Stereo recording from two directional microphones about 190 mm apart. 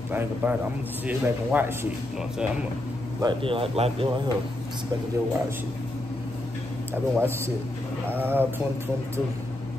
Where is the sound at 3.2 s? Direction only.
25° right (ahead or behind).